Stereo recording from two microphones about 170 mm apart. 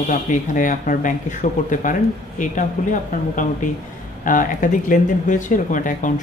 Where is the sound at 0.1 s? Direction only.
50° left (ahead or behind).